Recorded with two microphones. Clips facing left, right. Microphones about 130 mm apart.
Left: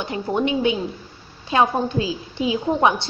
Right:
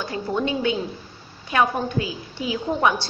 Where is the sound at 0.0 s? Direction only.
20° left (ahead or behind).